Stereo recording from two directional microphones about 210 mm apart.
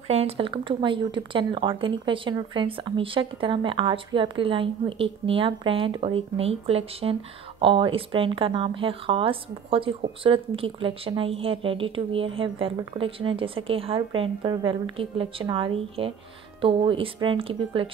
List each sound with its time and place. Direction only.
0.1 s speech: 25° right (ahead or behind)